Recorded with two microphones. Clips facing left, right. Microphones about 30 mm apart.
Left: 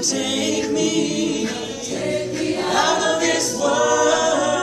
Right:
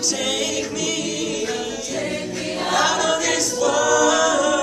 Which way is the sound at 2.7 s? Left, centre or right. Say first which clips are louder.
Even; centre.